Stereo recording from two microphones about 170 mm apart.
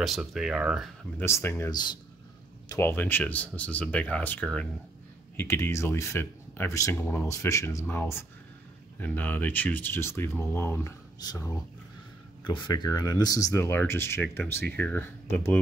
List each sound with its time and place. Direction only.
0.0 s speech: centre (ahead or behind)
1.1 s speech: 15° left (ahead or behind)
2.7 s speech: 15° left (ahead or behind)